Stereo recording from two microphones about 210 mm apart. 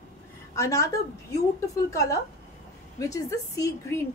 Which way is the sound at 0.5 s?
15° left (ahead or behind).